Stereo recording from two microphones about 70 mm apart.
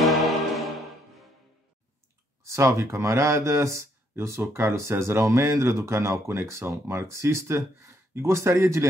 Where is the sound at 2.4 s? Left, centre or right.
Right.